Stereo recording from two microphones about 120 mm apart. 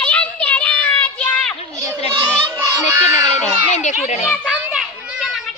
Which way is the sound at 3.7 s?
75° left (ahead or behind).